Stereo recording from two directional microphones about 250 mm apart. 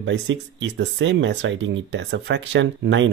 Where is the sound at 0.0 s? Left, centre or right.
Right.